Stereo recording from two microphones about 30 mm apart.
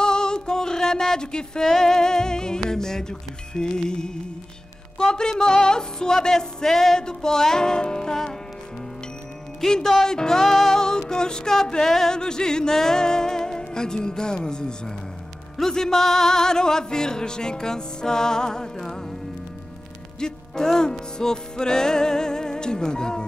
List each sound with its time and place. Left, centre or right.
0.0 s music: left
1.6 s music: centre
4.9 s speech: left
5.4 s music: left
9.6 s speech: left
10.0 s music: left
20.2 s music: left